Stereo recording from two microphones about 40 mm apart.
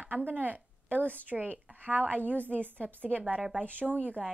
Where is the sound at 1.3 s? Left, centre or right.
Right.